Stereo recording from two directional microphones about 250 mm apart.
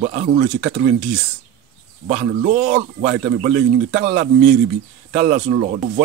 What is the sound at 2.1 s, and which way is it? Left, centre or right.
Speech, right.